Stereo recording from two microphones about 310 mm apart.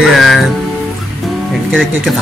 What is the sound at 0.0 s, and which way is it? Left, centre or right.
Music, centre.